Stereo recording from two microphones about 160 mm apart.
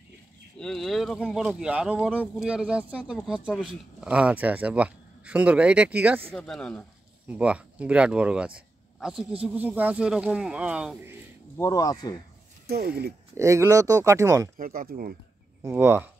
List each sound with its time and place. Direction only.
0.6 s speech: 5° left (ahead or behind)
6.3 s speech: 5° left (ahead or behind)
7.2 s speech: 10° right (ahead or behind)
8.5 s a sound: 5° right (ahead or behind)
9.4 s speech: 10° right (ahead or behind)
11.5 s speech: 20° left (ahead or behind)
12.6 s speech: 75° right (ahead or behind)
13.4 s speech: 20° right (ahead or behind)
14.6 s speech: 60° right (ahead or behind)
15.6 s speech: 15° right (ahead or behind)